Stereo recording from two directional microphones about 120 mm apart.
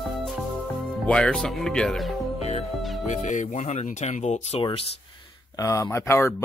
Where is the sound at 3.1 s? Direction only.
90° left; by 4.6 s 65° left (ahead or behind).